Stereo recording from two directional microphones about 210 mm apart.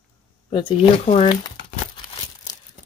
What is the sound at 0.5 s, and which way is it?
Speech, 25° left (ahead or behind).